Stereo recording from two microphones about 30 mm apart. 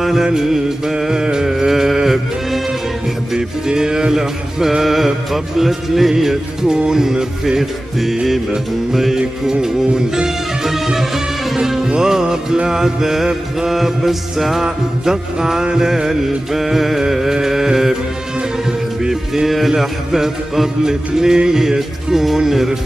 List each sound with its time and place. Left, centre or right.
0.0 s music: centre
3.3 s music: right
6.7 s music: right
8.9 s music: centre
9.5 s music: right
13.7 s music: centre
14.6 s music: centre
18.7 s music: right
19.4 s music: centre